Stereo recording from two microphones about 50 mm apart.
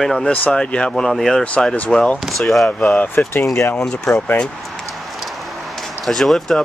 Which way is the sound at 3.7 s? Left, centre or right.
Centre.